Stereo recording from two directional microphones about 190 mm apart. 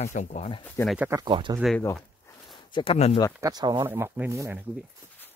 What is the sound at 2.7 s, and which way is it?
Speech, 30° left (ahead or behind).